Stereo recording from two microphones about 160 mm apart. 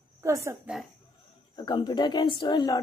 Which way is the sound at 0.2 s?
20° right (ahead or behind).